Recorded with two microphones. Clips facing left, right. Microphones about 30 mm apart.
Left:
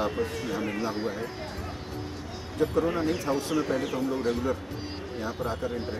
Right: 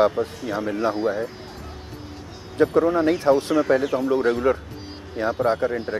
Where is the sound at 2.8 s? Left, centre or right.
Right.